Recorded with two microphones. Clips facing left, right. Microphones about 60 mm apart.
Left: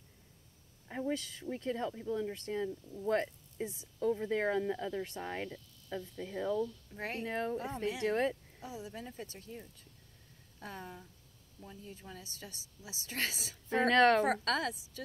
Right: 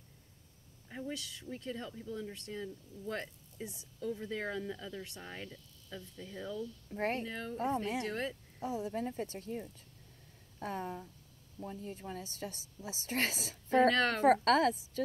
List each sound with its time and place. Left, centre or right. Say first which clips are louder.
0.8 s speech: left 5 dB; left
7.0 s a woman's voice: right 5 dB; right
7.2 s speech: left 5 dB; left
7.6 s a woman's voice: right 3 dB; right
8.0 s speech: left 6 dB; left
8.6 s a woman's voice: right 8 dB; right
11.8 s a woman's voice: right 6 dB; right
13.7 s speech: left 2 dB; left
14.2 s a woman's voice: right 6 dB; right